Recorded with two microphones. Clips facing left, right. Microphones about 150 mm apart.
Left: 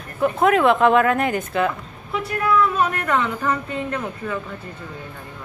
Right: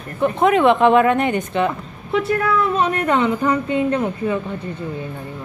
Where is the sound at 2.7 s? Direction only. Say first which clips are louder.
Right 3 dB; 25° right (ahead or behind).